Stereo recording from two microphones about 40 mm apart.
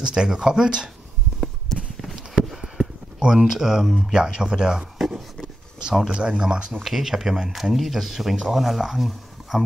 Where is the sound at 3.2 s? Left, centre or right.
Centre.